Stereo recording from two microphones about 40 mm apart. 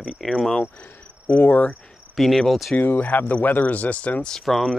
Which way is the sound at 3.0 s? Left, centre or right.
Left.